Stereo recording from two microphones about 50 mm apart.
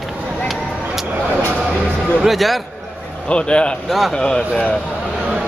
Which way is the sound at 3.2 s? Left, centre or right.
Left.